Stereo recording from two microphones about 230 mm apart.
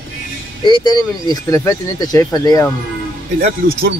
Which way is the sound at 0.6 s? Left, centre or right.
Centre.